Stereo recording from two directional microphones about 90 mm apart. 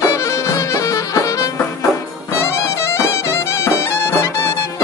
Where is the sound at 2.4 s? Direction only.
30° left (ahead or behind).